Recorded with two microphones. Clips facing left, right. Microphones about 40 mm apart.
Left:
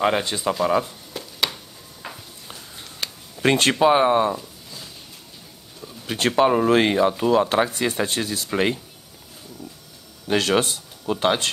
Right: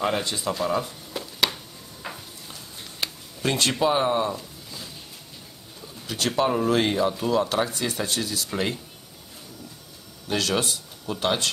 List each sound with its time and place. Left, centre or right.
0.0 s speech: left
1.1 s a sound: centre
3.4 s speech: left
3.8 s speech: left
6.0 s speech: left
10.3 s speech: left